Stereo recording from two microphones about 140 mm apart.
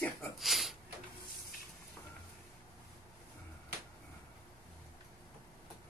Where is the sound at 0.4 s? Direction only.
Centre (ahead or behind).